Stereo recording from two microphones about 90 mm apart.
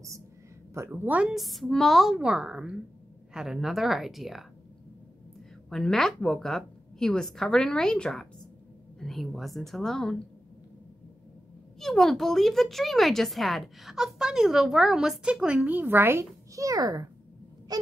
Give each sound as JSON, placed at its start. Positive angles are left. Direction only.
{"t": 0.7, "sound": "a woman's voice", "side_deg": -20}
{"t": 1.3, "sound": "speech", "side_deg": 0}
{"t": 5.7, "sound": "speech", "side_deg": 5}
{"t": 11.8, "sound": "speech", "side_deg": 5}